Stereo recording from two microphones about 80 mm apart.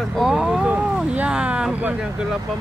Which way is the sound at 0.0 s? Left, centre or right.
Centre.